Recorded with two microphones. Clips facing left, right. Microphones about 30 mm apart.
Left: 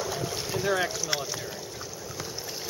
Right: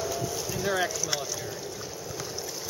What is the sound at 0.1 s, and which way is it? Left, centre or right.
Boat, left.